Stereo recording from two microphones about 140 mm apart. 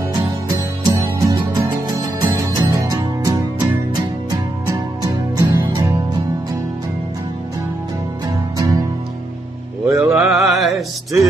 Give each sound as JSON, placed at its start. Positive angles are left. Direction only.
{"t": 0.8, "sound": "music", "side_deg": -25}
{"t": 8.3, "sound": "music", "side_deg": -25}
{"t": 9.8, "sound": "mantra", "side_deg": -5}
{"t": 10.3, "sound": "music", "side_deg": 0}